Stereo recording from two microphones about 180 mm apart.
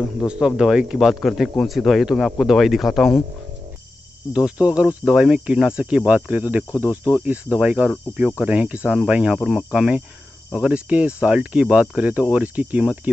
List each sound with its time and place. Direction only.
0.2 s speech: 5° right (ahead or behind)
4.3 s speech: 5° right (ahead or behind)
6.7 s speech: 15° left (ahead or behind)
7.2 s speech: 5° right (ahead or behind)